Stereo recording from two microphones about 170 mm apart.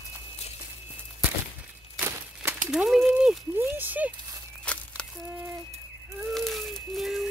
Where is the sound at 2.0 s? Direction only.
15° right (ahead or behind).